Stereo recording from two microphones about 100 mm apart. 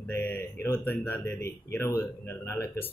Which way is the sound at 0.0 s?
20° left (ahead or behind).